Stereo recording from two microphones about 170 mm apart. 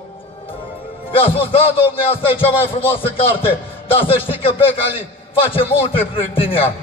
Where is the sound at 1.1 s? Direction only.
35° left (ahead or behind).